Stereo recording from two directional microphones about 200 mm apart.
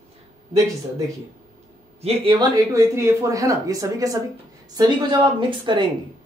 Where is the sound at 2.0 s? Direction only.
30° right (ahead or behind).